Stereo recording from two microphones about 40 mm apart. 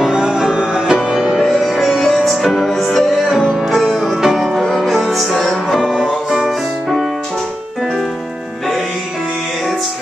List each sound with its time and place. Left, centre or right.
0.1 s music: centre
1.5 s music: centre
3.9 s music: centre
4.6 s music: centre